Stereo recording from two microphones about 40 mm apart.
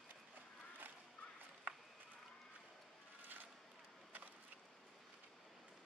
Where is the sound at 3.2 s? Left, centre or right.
Right.